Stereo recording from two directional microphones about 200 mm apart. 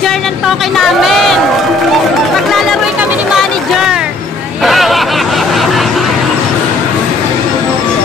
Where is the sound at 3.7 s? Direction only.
5° right (ahead or behind).